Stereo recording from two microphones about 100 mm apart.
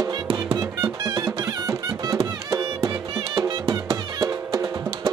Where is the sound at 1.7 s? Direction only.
30° right (ahead or behind).